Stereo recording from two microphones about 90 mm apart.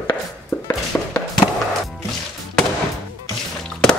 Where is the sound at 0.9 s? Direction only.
15° left (ahead or behind).